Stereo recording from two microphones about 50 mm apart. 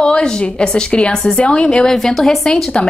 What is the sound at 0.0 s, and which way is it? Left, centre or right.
A woman's voice, centre.